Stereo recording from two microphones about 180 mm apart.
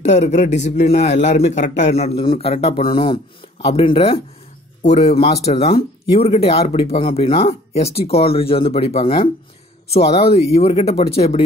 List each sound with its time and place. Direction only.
0.0 s speech: 40° left (ahead or behind)